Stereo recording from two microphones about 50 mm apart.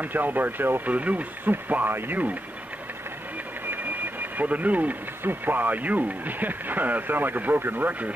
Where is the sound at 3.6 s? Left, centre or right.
Right.